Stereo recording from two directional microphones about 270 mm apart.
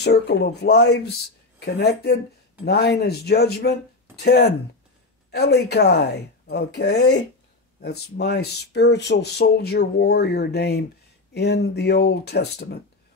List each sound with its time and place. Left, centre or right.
0.0 s speech: left